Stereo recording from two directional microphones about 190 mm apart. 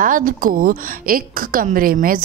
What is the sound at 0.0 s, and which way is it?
A woman's voice, 45° right (ahead or behind).